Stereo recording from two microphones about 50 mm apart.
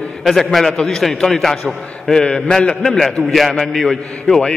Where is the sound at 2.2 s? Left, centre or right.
Left.